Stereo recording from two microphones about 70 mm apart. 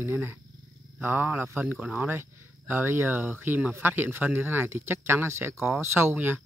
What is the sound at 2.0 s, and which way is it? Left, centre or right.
Speech, right.